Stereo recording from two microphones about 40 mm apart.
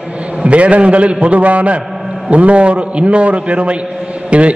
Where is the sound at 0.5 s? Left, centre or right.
Right.